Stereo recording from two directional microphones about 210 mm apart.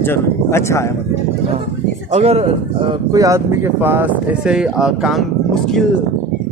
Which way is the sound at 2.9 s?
15° right (ahead or behind).